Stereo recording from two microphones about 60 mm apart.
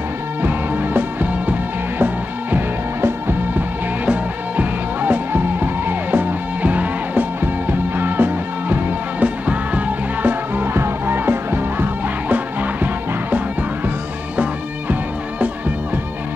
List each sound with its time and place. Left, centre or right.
0.4 s music: right
2.5 s music: right
4.0 s music: right
14.3 s music: right